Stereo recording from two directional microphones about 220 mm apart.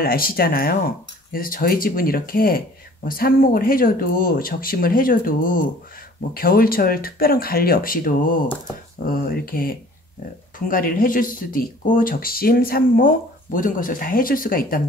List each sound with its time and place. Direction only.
0.0 s speech: 40° left (ahead or behind)